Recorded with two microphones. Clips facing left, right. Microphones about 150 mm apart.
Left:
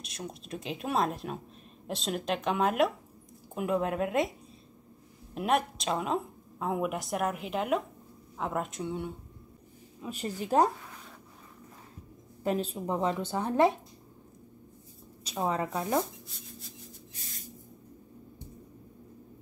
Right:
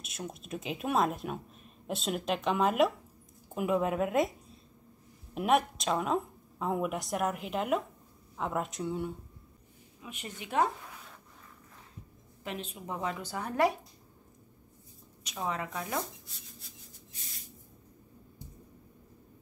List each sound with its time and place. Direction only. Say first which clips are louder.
0.0 s speech: even; 5° right (ahead or behind)
5.3 s speech: right 1 dB; centre (ahead or behind)
10.0 s a woman's voice: left 9 dB; 35° left (ahead or behind)
12.4 s a woman's voice: left 9 dB; 40° left (ahead or behind)
15.2 s a woman's voice: left 5 dB; 30° left (ahead or behind)